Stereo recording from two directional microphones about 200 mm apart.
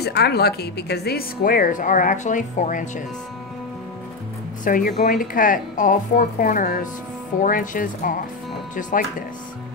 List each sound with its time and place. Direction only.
0.0 s speech: 55° left (ahead or behind); by 2.9 s 40° left (ahead or behind)
4.6 s speech: 45° left (ahead or behind)